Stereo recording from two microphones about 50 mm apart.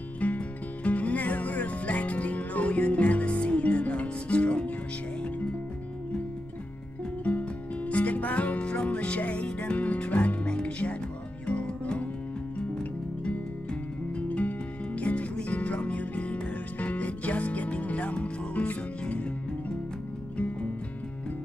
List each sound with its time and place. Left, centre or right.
0.2 s music: left
7.2 s music: left